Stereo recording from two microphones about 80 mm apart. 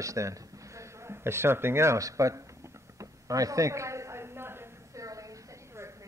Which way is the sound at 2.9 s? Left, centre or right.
Right.